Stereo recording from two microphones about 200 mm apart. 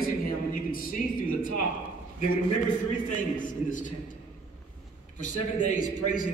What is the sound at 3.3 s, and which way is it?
Speech, 40° left (ahead or behind).